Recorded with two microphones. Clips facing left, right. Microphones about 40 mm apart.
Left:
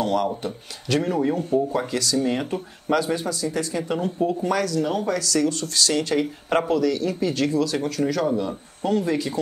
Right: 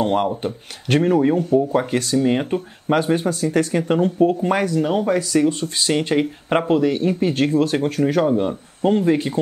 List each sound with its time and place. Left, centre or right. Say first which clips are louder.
0.0 s speech: right 4 dB; right